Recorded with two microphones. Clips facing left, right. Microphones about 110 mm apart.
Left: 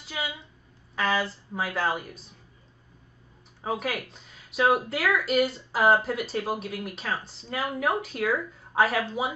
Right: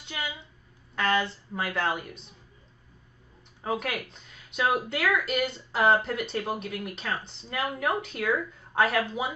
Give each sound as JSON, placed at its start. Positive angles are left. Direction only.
{"t": 0.0, "sound": "a sound", "side_deg": 5}
{"t": 0.9, "sound": "speech", "side_deg": 5}
{"t": 3.6, "sound": "speech", "side_deg": 0}